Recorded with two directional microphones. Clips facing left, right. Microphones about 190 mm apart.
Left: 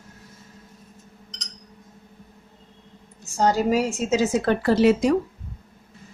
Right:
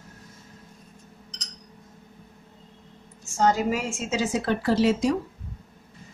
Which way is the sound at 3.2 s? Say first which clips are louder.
Left 2 dB; 35° left (ahead or behind).